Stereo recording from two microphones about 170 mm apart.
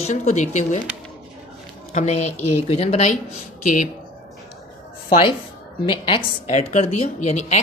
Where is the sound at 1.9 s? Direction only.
40° left (ahead or behind).